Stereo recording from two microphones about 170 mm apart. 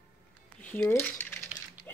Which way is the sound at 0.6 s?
10° left (ahead or behind).